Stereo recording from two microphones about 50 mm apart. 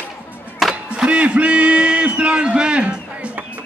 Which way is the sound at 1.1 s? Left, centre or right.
Right.